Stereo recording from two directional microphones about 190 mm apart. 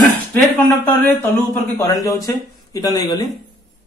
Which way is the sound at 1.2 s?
10° left (ahead or behind).